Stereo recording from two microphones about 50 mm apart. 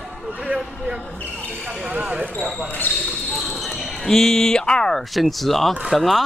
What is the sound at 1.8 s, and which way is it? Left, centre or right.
Basketball bounce, right.